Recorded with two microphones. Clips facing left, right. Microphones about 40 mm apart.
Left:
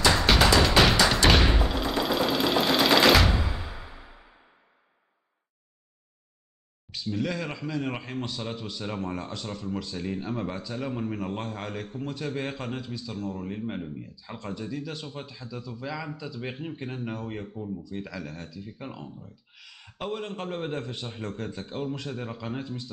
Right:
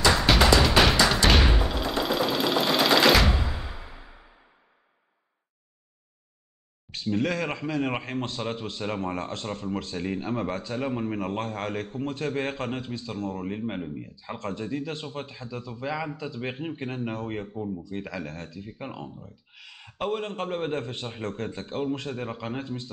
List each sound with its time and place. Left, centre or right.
0.3 s music: centre
6.9 s speech: right
18.6 s speech: centre